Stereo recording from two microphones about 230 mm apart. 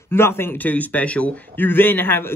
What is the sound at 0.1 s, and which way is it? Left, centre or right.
A man's voice, centre.